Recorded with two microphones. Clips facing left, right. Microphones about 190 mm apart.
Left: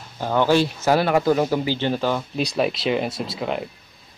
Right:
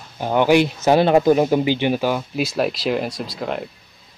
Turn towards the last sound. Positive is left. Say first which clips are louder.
# even
turn(degrees=0)  # may be behind; listen again after turning